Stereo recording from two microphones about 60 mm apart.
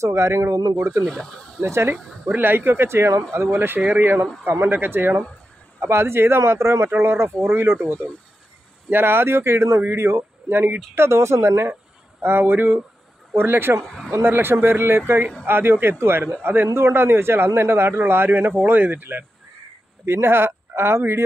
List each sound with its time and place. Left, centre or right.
0.0 s speech: right
0.6 s speech: right
1.0 s speech: centre
1.7 s speech: right
2.0 s speech: centre
2.3 s speech: right
3.5 s speech: right
11.0 s speech: right
12.2 s speech: right
20.1 s speech: right